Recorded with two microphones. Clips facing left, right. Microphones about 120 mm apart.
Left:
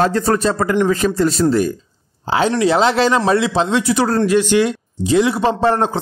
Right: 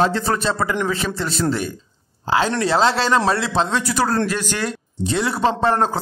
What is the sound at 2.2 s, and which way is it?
Speech, 25° left (ahead or behind).